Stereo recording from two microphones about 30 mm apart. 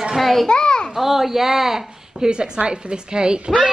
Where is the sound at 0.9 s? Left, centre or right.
Centre.